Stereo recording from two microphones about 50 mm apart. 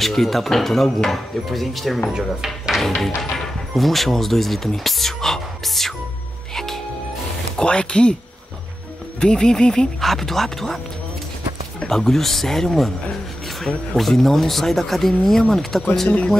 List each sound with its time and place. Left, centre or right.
0.0 s speech: centre
2.0 s speech: centre
2.8 s speech: centre
6.5 s music: centre
7.5 s speech: left
9.2 s speech: centre
11.8 s speech: centre
13.9 s speech: centre